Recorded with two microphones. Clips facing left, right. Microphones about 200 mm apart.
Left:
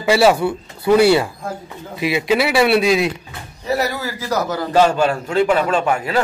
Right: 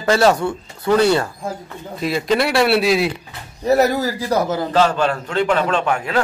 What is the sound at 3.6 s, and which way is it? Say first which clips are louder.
A man's voice: right 6 dB; 45° right (ahead or behind).